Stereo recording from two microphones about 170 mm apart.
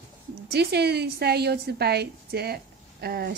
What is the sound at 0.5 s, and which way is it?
A woman's voice, 75° right (ahead or behind).